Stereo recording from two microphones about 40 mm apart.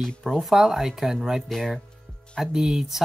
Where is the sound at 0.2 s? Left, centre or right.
Centre.